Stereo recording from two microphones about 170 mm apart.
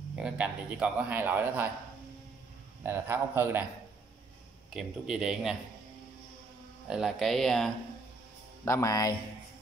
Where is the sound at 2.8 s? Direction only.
15° right (ahead or behind).